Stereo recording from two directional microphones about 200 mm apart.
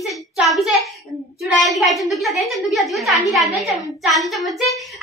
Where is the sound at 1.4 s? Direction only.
Centre (ahead or behind).